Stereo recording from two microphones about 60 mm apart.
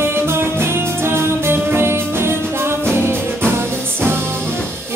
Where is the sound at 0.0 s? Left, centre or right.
Right.